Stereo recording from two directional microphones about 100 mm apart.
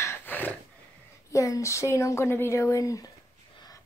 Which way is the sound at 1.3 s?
30° left (ahead or behind).